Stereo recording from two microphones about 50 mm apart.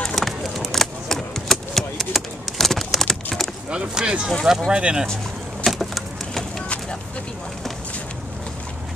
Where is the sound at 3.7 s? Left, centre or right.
Centre.